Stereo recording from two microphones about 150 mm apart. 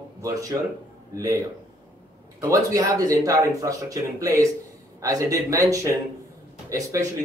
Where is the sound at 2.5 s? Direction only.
25° right (ahead or behind).